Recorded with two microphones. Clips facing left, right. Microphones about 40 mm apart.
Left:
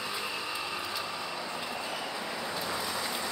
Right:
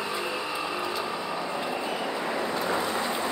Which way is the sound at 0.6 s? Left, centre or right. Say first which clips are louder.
Right 6 dB; centre.